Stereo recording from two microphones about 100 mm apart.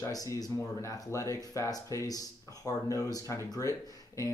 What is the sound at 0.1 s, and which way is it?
Speech, 35° left (ahead or behind).